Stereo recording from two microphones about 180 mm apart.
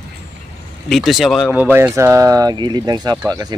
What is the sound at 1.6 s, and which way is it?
Speech, 15° right (ahead or behind).